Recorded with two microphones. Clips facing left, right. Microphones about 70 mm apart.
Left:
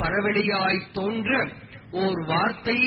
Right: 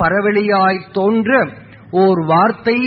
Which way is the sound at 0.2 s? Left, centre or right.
Right.